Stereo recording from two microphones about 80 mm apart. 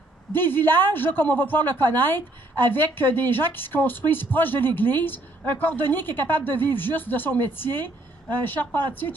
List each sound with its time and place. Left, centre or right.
0.3 s a woman's voice: left